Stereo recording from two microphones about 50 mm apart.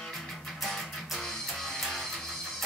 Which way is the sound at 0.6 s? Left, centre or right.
Centre.